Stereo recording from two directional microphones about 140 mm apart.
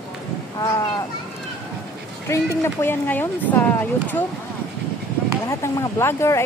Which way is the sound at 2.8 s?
15° left (ahead or behind).